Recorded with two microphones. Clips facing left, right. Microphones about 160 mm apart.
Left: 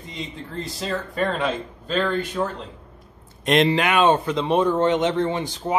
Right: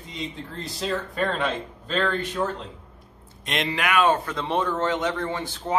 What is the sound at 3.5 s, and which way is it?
Speech, 30° left (ahead or behind).